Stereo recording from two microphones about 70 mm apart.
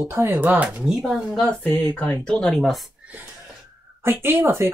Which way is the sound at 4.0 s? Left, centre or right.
Right.